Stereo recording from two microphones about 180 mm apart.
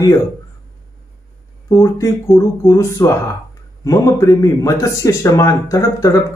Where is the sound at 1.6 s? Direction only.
15° left (ahead or behind).